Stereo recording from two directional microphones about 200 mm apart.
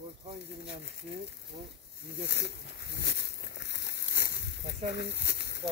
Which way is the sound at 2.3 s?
55° left (ahead or behind).